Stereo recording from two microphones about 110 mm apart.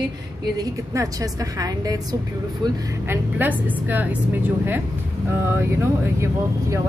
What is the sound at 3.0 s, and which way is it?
A woman's voice, 20° right (ahead or behind).